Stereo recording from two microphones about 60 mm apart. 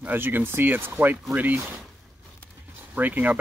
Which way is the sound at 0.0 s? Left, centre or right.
Right.